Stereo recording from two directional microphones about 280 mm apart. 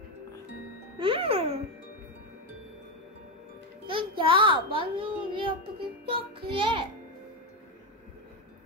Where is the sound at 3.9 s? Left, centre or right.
Centre.